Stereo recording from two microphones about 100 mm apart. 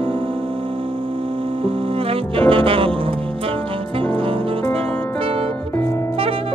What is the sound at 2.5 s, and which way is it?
Music, 65° right (ahead or behind).